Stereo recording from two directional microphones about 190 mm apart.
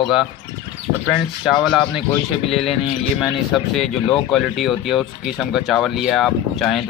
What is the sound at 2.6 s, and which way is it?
Speech, 30° left (ahead or behind).